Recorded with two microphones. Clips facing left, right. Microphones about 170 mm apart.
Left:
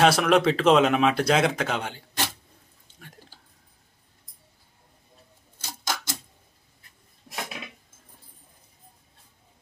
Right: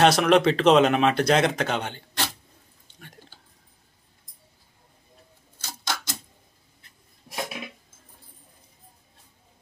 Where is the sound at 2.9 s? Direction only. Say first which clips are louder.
Right 1 dB; 5° left (ahead or behind).